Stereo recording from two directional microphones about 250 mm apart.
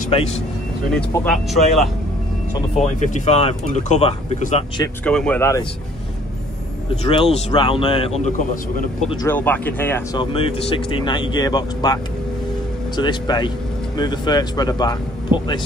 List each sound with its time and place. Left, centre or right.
0.9 s speech: centre
2.8 s speech: left
5.0 s speech: centre
7.1 s speech: left
9.1 s speech: centre
10.3 s speech: left